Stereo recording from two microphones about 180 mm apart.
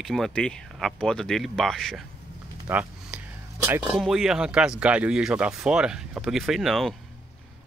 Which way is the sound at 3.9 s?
Centre (ahead or behind).